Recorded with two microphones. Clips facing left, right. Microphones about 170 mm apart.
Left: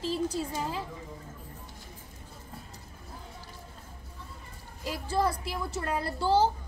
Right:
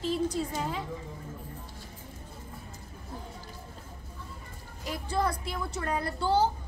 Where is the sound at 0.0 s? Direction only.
30° left (ahead or behind).